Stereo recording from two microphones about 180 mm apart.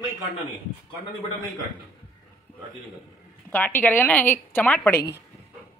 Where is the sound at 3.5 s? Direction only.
10° left (ahead or behind).